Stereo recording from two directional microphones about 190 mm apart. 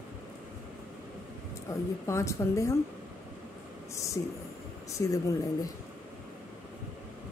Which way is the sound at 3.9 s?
15° left (ahead or behind).